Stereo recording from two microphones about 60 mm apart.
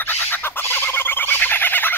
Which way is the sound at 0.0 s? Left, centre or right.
Left.